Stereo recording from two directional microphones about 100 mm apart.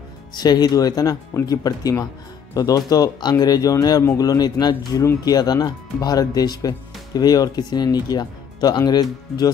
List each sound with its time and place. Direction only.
0.3 s speech: 45° left (ahead or behind)